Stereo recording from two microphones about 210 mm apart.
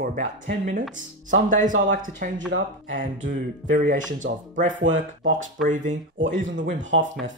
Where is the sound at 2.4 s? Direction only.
60° right (ahead or behind).